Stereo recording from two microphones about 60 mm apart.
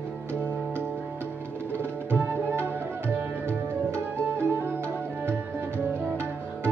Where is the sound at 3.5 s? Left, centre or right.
Left.